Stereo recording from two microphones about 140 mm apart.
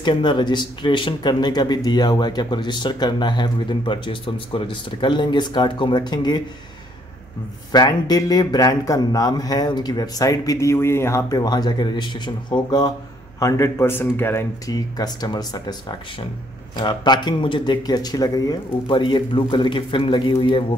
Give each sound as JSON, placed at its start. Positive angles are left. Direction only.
{"t": 0.0, "sound": "speech", "side_deg": 35}
{"t": 7.7, "sound": "a man's voice", "side_deg": 30}
{"t": 14.7, "sound": "speech", "side_deg": 25}
{"t": 16.7, "sound": "speech", "side_deg": 30}